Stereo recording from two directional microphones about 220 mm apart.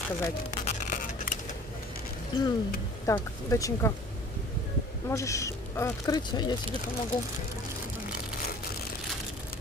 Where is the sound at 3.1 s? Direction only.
15° left (ahead or behind).